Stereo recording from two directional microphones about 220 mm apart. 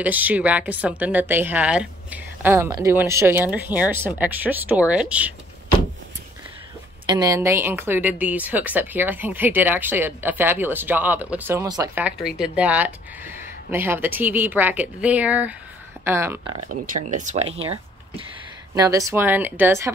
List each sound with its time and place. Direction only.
0.0 s a woman's voice: 5° right (ahead or behind)
7.1 s a woman's voice: 15° right (ahead or behind)
16.5 s speech: 35° right (ahead or behind)
18.8 s a woman's voice: 15° right (ahead or behind)